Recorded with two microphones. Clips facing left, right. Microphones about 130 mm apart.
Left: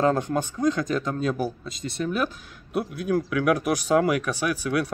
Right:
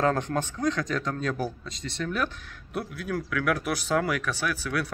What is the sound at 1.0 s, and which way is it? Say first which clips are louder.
Speech: left 3 dB; 10° left (ahead or behind).